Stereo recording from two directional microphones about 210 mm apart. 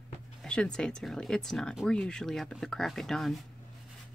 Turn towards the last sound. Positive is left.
turn(degrees=0)  # may be behind; listen again after turning